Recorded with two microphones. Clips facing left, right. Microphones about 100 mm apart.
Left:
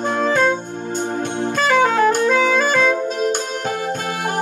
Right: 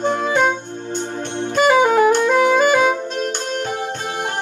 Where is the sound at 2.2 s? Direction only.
15° right (ahead or behind).